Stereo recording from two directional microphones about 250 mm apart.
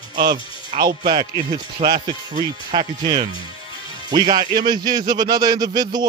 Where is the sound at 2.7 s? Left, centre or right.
Centre.